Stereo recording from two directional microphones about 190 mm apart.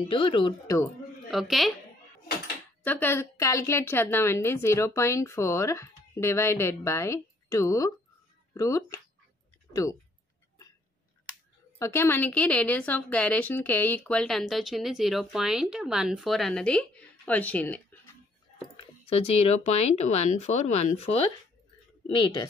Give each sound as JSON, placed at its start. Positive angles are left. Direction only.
{"t": 0.0, "sound": "speech", "side_deg": 30}
{"t": 1.3, "sound": "speech", "side_deg": 0}
{"t": 2.8, "sound": "a woman's voice", "side_deg": 10}
{"t": 11.8, "sound": "a woman's voice", "side_deg": 15}
{"t": 18.8, "sound": "speech", "side_deg": 30}